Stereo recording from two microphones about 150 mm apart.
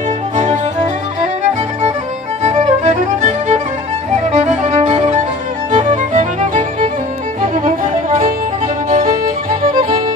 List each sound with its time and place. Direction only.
2.4 s music: 50° right (ahead or behind); by 9.9 s 70° right (ahead or behind)